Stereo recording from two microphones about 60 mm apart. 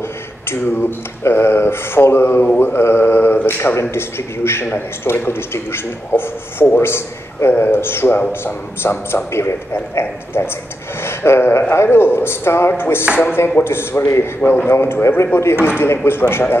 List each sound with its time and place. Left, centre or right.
0.5 s a man's voice: left